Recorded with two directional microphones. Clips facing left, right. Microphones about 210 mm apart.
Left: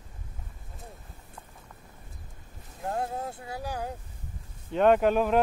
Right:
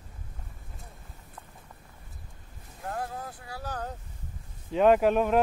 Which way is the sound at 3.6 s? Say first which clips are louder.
Left 1 dB; 10° left (ahead or behind).